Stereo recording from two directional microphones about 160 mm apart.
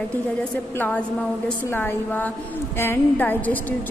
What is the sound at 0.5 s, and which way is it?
A woman's voice, 10° left (ahead or behind).